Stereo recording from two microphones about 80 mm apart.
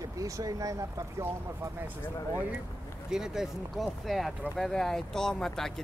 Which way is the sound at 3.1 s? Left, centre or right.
Centre.